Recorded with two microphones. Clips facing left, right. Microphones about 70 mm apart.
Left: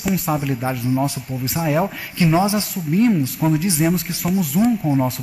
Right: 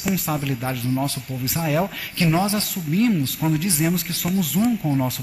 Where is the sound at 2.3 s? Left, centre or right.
Centre.